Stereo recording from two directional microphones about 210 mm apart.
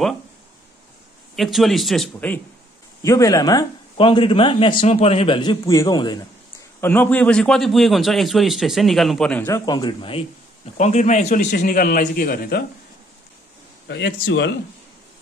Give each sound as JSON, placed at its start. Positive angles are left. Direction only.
{"t": 1.3, "sound": "a man's voice", "side_deg": 0}
{"t": 6.8, "sound": "a man's voice", "side_deg": 10}
{"t": 9.7, "sound": "a man's voice", "side_deg": 20}
{"t": 13.8, "sound": "a man's voice", "side_deg": 55}